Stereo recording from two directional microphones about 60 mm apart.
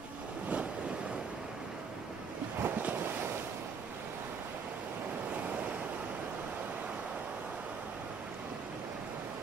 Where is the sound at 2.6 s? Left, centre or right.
Right.